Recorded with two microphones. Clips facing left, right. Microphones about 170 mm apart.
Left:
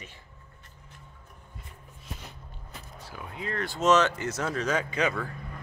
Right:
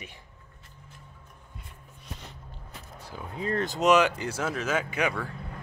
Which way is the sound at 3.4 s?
35° right (ahead or behind).